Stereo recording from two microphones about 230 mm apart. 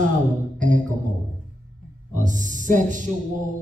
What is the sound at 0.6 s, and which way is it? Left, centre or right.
Music, right.